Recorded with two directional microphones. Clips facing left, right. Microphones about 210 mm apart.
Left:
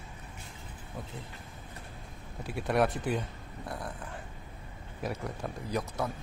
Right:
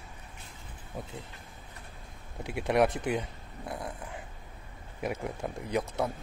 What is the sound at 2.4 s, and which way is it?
Speech, 20° right (ahead or behind).